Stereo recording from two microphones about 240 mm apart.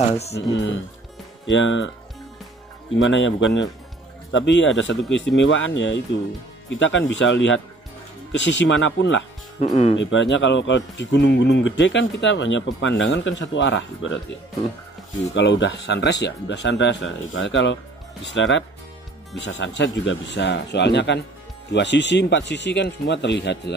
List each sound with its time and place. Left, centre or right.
0.5 s speech: left
3.0 s speech: left
9.6 s speech: left
9.9 s speech: left
15.3 s speech: left